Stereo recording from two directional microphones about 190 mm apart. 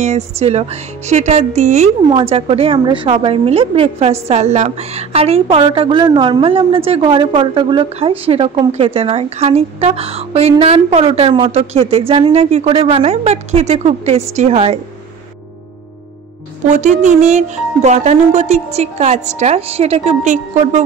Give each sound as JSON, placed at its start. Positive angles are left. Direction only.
{"t": 0.0, "sound": "a woman's voice", "side_deg": -35}
{"t": 16.6, "sound": "a woman's voice", "side_deg": -40}